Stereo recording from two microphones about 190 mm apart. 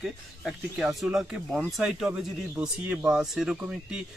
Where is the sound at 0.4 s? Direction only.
Centre (ahead or behind).